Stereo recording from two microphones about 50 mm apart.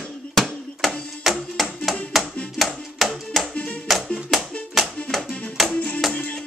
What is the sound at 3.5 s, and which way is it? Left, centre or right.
Music, left.